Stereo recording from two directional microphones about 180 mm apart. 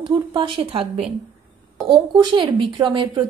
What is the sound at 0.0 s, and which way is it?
Speech, 30° right (ahead or behind).